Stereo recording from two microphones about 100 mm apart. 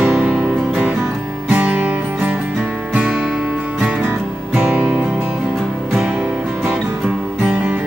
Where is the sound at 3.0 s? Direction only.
5° right (ahead or behind).